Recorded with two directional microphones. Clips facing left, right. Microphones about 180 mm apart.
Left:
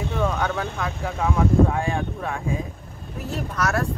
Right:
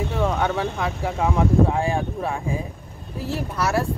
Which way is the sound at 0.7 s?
15° right (ahead or behind).